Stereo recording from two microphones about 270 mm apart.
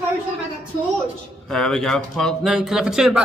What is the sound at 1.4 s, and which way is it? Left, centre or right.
A man's voice, centre.